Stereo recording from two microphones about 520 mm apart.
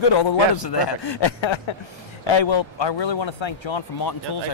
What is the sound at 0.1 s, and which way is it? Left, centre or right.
A man's voice, left.